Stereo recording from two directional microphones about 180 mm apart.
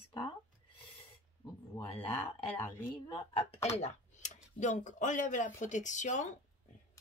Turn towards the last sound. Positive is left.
turn(degrees=45)  # may be behind; listen again after turning